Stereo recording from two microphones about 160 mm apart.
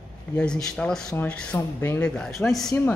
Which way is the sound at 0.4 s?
5° left (ahead or behind).